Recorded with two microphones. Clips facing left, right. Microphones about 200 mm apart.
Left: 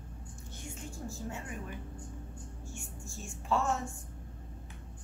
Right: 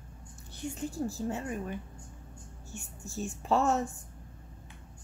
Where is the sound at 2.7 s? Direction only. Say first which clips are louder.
Right 5 dB; 40° right (ahead or behind).